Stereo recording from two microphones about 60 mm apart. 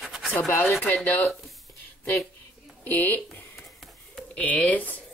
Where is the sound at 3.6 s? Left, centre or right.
Centre.